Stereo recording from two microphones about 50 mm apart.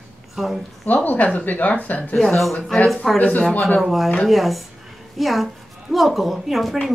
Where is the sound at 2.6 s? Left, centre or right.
Centre.